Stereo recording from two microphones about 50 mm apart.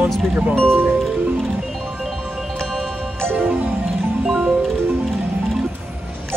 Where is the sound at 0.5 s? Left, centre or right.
Centre.